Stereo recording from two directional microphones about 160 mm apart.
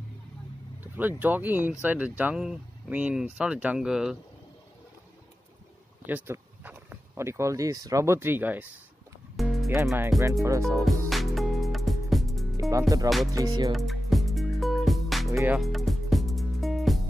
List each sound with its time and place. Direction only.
0.9 s speech: 10° right (ahead or behind)
6.0 s speech: 15° right (ahead or behind)
9.4 s music: centre (ahead or behind)
12.5 s music: 20° right (ahead or behind)
13.7 s music: centre (ahead or behind)